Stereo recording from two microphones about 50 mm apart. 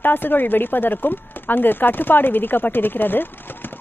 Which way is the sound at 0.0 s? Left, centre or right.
Left.